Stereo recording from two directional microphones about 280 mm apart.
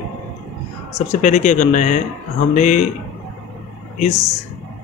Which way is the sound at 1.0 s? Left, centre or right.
Left.